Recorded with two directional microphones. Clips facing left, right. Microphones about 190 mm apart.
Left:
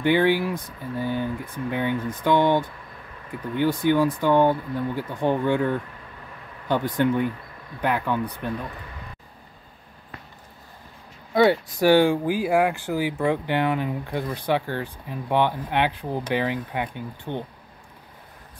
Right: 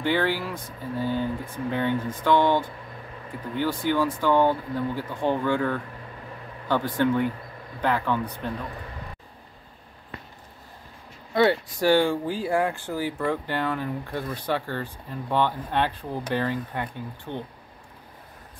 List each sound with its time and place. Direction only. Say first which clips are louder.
0.0 s speech: left 5 dB; 15° left (ahead or behind)
11.3 s speech: left 2 dB; 15° left (ahead or behind)